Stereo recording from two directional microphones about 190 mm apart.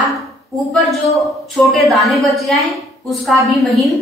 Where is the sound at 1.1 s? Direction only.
Centre (ahead or behind).